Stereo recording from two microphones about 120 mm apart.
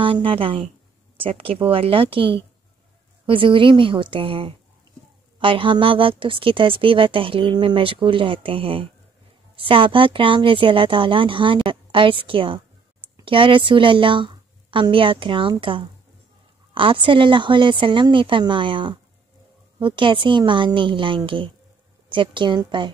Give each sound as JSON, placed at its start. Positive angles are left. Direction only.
{"t": 0.0, "sound": "a woman's voice", "side_deg": -45}